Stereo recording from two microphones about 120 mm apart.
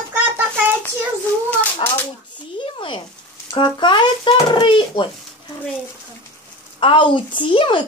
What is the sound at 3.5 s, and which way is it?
A child's voice, 40° left (ahead or behind).